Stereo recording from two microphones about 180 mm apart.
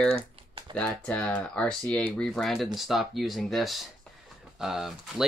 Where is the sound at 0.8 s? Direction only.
15° left (ahead or behind).